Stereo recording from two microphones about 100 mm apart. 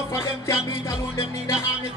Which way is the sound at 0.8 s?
30° left (ahead or behind).